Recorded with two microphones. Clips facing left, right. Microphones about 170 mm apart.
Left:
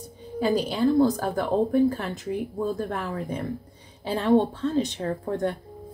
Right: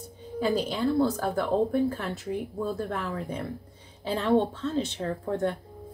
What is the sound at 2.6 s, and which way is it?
Speech, 40° left (ahead or behind).